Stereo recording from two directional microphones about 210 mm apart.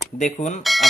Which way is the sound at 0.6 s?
Centre (ahead or behind).